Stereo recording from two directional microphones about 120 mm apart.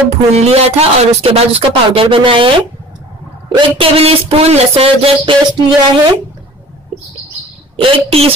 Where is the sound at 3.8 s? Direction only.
55° right (ahead or behind).